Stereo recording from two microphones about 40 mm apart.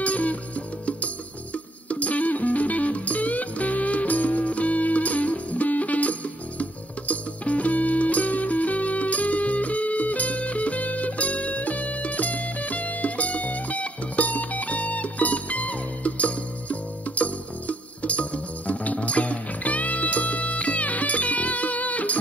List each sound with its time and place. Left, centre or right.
0.0 s music: left